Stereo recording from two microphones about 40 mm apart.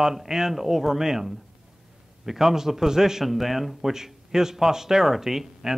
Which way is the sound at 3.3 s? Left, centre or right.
Centre.